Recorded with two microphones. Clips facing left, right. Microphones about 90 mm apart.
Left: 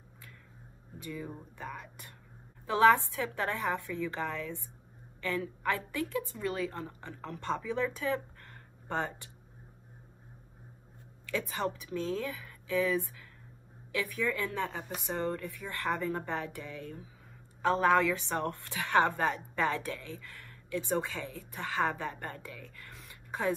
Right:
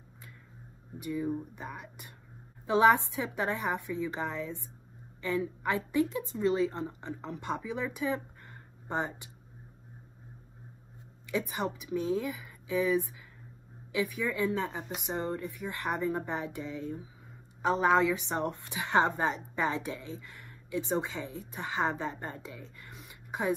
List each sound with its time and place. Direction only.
0.9 s a woman's voice: 15° right (ahead or behind)
11.2 s a woman's voice: 15° right (ahead or behind)